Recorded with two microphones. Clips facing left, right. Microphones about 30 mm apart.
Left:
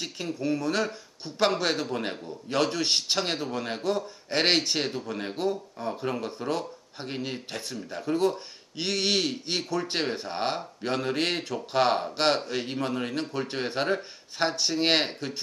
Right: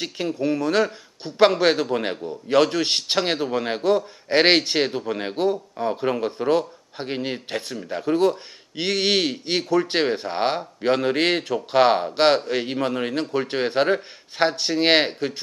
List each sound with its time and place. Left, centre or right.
0.4 s speech: centre